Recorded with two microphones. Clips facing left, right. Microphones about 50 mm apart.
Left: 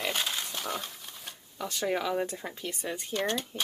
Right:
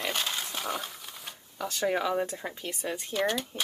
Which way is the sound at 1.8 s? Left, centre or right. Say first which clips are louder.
Right 2 dB; centre.